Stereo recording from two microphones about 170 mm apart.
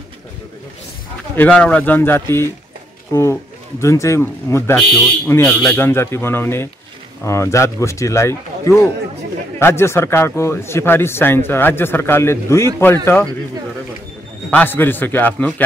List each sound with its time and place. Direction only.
1.3 s a man's voice: 10° left (ahead or behind)
4.9 s speech: centre (ahead or behind)
5.3 s a man's voice: 15° left (ahead or behind)
14.5 s a man's voice: 10° left (ahead or behind)